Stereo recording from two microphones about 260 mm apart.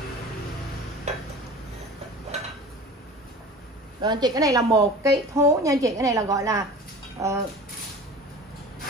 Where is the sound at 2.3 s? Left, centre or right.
Right.